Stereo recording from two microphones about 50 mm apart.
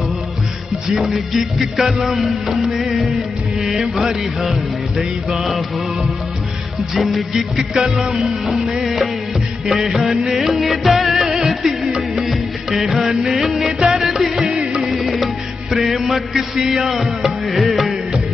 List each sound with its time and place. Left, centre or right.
0.8 s music: centre
7.0 s music: centre
7.3 s music: centre